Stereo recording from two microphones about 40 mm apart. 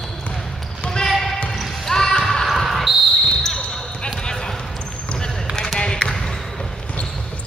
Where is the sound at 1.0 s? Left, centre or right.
Centre.